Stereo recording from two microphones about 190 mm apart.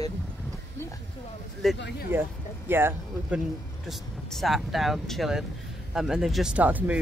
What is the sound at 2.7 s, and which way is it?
Speech, 10° right (ahead or behind).